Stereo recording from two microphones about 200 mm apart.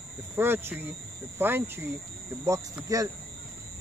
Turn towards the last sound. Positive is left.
turn(degrees=-15)  # may be behind; listen again after turning